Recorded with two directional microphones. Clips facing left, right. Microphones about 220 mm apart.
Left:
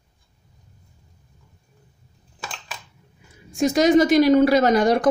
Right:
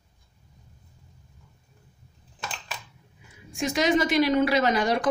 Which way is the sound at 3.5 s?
40° left (ahead or behind).